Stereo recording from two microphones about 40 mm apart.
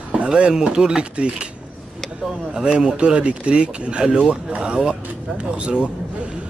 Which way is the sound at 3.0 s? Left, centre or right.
Right.